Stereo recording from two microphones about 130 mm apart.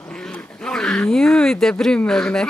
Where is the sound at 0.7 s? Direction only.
5° left (ahead or behind).